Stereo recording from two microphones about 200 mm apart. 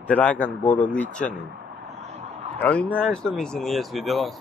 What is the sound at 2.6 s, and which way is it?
A man's voice, 5° left (ahead or behind).